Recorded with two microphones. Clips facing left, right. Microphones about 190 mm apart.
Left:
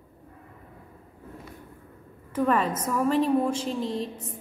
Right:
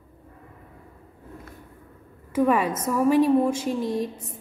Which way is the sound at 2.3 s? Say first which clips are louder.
Right 3 dB; 10° right (ahead or behind).